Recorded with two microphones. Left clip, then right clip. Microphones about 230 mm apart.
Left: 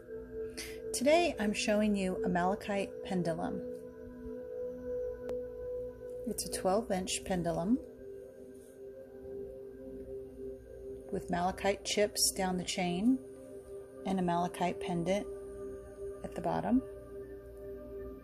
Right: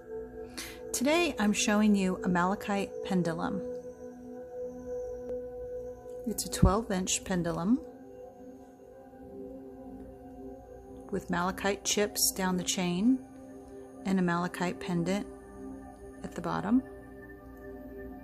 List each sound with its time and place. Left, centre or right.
0.6 s speech: centre
6.3 s speech: centre
11.1 s speech: centre
14.0 s speech: centre